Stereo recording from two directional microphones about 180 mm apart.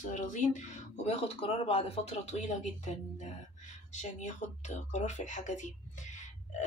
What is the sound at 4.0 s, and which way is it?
Speech, 40° left (ahead or behind).